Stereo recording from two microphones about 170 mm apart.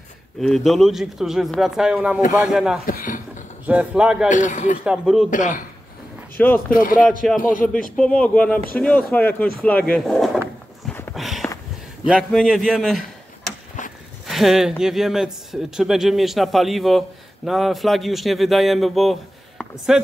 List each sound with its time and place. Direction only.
0.4 s a man's voice: centre (ahead or behind)
2.9 s a sound: 55° left (ahead or behind)
3.6 s a man's voice: 5° right (ahead or behind)
4.3 s a man's voice: 45° left (ahead or behind)
4.8 s a man's voice: 5° right (ahead or behind)
5.3 s a man's voice: 50° left (ahead or behind)
6.3 s speech: 10° left (ahead or behind)
6.7 s a man's voice: 55° left (ahead or behind)
7.9 s a man's voice: 5° left (ahead or behind)
10.9 s horse: 10° left (ahead or behind)
11.1 s a sound: centre (ahead or behind)
12.1 s a man's voice: centre (ahead or behind)
13.8 s a sound: 45° left (ahead or behind)
14.2 s a man's voice: centre (ahead or behind)